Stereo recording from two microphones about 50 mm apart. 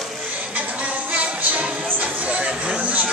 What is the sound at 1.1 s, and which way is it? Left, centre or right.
Music, right.